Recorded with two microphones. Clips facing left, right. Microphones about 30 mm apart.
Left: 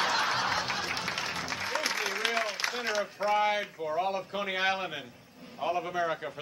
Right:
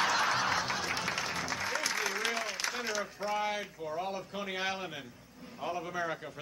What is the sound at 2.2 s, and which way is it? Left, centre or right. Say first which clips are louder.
A man's voice: left 4 dB; centre.